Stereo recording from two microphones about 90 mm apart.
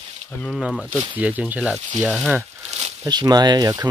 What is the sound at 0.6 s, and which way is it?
Speech, 10° right (ahead or behind).